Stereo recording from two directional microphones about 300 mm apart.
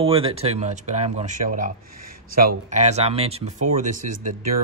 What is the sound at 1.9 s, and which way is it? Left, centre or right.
Speech, right.